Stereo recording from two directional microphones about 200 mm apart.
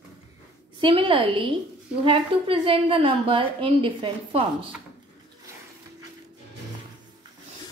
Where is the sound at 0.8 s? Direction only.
25° right (ahead or behind).